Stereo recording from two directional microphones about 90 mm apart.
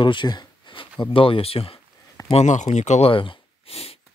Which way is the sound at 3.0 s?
75° left (ahead or behind).